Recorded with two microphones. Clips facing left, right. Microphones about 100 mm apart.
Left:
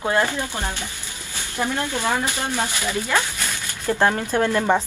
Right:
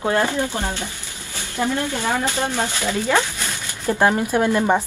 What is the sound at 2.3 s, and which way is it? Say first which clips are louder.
Speech: right 3 dB; 20° right (ahead or behind).